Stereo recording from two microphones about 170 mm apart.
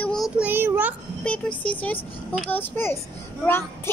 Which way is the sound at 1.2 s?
5° left (ahead or behind).